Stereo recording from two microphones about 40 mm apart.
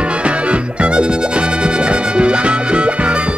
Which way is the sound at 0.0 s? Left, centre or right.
Right.